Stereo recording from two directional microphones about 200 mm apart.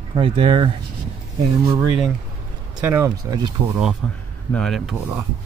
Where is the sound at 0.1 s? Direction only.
25° right (ahead or behind).